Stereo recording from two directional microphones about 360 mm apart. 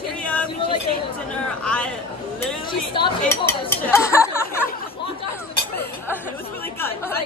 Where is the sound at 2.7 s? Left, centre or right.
Centre.